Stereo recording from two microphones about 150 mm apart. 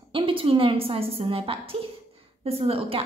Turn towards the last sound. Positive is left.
turn(degrees=-40)  # may be behind; listen again after turning